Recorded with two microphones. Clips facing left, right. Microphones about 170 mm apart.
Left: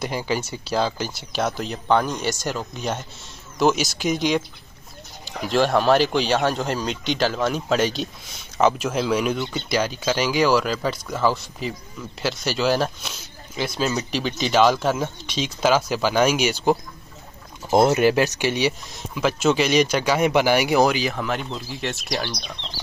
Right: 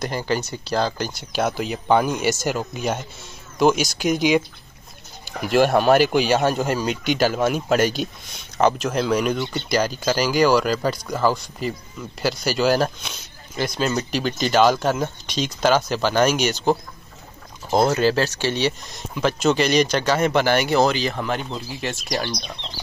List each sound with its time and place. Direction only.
0.0 s speech: 5° left (ahead or behind)
5.4 s speech: 5° right (ahead or behind)
17.6 s speech: 20° left (ahead or behind); by 22.4 s centre (ahead or behind)